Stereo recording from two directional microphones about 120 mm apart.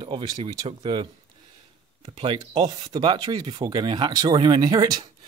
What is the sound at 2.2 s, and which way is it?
Speech, 45° right (ahead or behind).